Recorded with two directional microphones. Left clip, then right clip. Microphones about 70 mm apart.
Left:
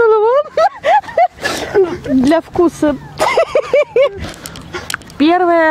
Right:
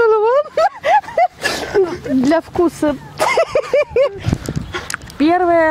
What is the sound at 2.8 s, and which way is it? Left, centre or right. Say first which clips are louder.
Speech: left 3 dB; left.